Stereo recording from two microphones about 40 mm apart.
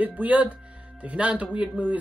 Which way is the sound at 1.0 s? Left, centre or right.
Right.